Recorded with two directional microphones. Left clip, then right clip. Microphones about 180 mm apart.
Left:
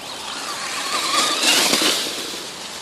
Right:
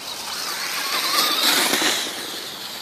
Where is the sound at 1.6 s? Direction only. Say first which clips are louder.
Left 2 dB; 45° left (ahead or behind).